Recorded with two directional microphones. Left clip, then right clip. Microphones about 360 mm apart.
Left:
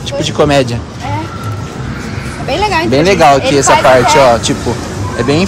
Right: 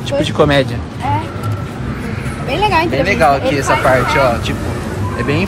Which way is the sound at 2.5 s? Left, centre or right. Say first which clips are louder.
Left 2 dB; centre.